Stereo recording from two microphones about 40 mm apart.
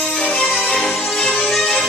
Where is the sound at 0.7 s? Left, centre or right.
Centre.